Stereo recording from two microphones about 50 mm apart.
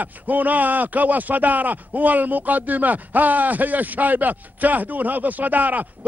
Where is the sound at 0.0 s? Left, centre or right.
Right.